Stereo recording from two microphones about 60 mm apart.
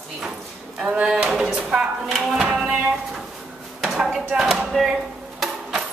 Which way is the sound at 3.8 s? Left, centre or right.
Centre.